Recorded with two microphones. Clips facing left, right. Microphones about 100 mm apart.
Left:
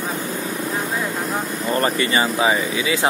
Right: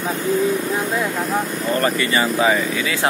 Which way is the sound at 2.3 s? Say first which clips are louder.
Right 1 dB; 15° left (ahead or behind).